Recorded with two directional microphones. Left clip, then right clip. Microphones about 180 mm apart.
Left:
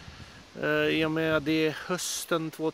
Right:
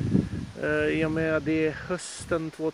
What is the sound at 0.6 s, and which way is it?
Speech, 20° left (ahead or behind).